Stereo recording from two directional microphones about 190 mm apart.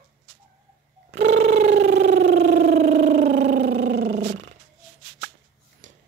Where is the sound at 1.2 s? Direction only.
35° right (ahead or behind).